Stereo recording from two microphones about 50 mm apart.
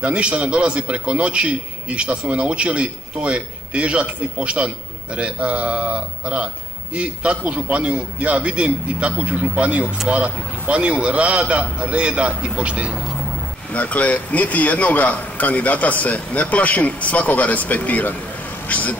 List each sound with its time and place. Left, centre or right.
0.0 s a man's voice: right
13.7 s a man's voice: left